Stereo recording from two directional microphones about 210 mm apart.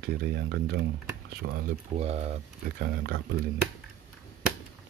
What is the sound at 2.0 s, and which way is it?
Speech, 30° right (ahead or behind).